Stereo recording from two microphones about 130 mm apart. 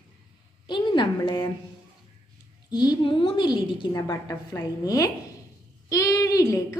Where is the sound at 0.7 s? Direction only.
40° left (ahead or behind).